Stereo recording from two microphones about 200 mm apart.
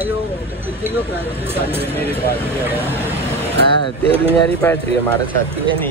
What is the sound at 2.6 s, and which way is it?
Speech, 10° right (ahead or behind).